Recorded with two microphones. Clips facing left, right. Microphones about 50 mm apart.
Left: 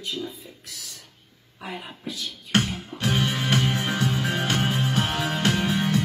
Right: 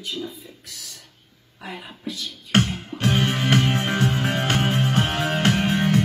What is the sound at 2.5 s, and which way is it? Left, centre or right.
Music, right.